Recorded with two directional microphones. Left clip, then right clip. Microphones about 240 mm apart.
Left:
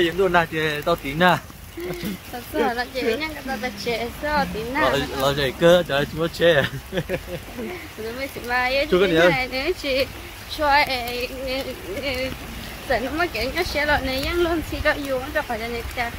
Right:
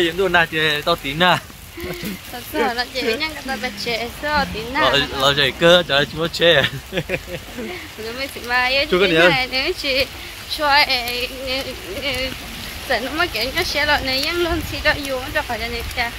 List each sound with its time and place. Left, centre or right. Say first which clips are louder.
0.0 s speech: right 2 dB; centre
2.6 s speech: right 2 dB; centre
8.2 s speech: right 4 dB; centre
8.9 s speech: right 2 dB; centre
9.3 s speech: right 4 dB; centre